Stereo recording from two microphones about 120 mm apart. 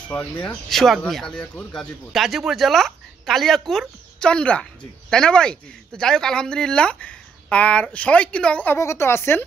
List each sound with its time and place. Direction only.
0.1 s speech: 10° left (ahead or behind)
8.7 s speech: 25° left (ahead or behind)